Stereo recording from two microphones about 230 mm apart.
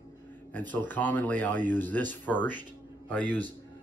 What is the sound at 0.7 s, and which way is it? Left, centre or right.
A man's voice, centre.